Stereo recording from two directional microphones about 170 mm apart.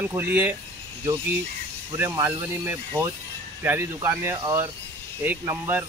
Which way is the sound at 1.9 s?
15° right (ahead or behind).